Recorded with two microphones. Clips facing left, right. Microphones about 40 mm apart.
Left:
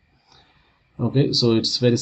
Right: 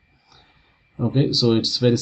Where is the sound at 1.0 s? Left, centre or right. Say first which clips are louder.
Even; centre.